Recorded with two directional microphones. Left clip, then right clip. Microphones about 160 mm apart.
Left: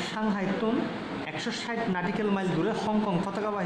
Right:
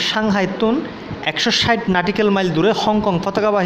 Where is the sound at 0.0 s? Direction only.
50° right (ahead or behind).